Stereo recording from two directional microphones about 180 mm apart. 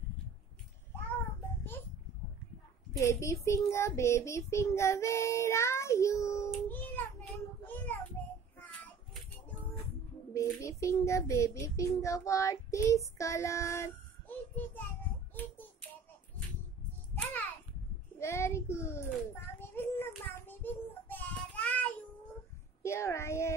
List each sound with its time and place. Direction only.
3.0 s child singing: 15° left (ahead or behind)
10.3 s a child's voice: 15° left (ahead or behind)
17.1 s a sound: 10° left (ahead or behind)
18.2 s child singing: 15° left (ahead or behind)
19.4 s a sound: 10° left (ahead or behind)
20.3 s child singing: 10° left (ahead or behind)